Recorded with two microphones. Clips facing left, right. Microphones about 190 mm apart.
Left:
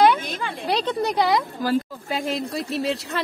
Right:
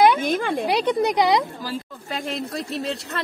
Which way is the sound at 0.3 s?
55° right (ahead or behind).